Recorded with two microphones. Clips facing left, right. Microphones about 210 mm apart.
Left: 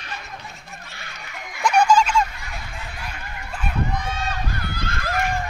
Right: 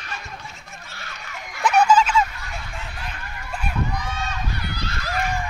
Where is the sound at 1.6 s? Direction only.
5° right (ahead or behind).